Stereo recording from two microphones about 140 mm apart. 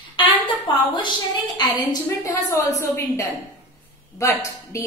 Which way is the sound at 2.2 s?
20° left (ahead or behind).